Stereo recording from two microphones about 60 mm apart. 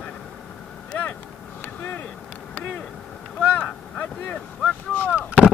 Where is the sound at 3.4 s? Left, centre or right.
Left.